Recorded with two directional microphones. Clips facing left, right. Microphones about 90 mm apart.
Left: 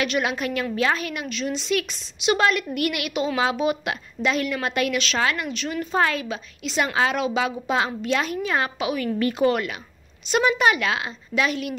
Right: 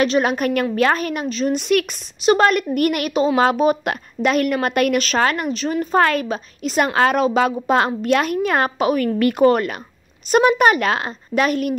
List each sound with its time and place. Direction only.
0.0 s a woman's voice: 40° right (ahead or behind)
1.5 s a woman's voice: 55° right (ahead or behind); by 5.9 s 35° right (ahead or behind)
5.9 s speech: 55° right (ahead or behind)
6.2 s a woman's voice: 45° right (ahead or behind)